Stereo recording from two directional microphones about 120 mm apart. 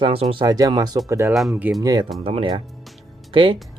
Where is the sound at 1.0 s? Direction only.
20° right (ahead or behind).